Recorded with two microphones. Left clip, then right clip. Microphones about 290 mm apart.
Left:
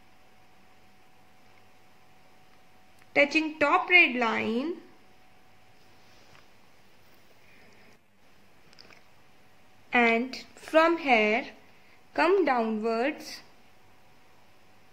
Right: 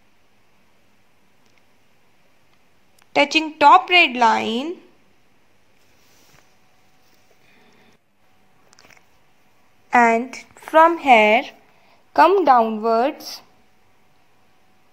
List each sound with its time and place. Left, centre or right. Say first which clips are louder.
3.1 s a woman's voice: right 6 dB; centre
9.8 s a woman's voice: right 9 dB; centre
11.0 s a woman's voice: right 11 dB; centre